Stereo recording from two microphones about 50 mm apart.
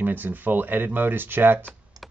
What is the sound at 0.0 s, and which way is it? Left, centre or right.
Speech, right.